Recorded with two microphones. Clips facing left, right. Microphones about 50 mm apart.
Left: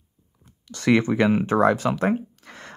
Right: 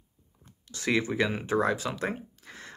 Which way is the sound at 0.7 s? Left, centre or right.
Left.